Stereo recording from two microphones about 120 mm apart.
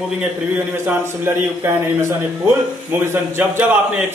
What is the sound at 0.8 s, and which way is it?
Speech, 20° right (ahead or behind).